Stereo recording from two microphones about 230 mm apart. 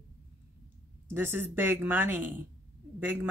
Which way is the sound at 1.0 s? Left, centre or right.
Centre.